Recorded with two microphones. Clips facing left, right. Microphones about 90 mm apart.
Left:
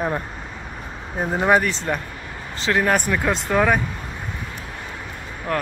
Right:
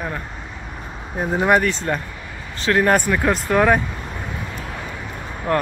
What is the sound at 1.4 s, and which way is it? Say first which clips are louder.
Speech: right 1 dB; 5° left (ahead or behind).